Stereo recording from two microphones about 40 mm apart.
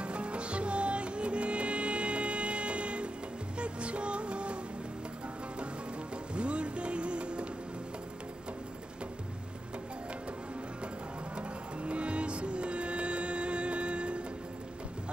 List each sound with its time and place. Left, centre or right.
0.0 s music: right
6.3 s music: right
11.3 s music: right